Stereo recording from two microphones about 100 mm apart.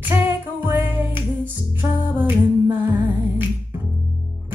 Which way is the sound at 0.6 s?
20° right (ahead or behind).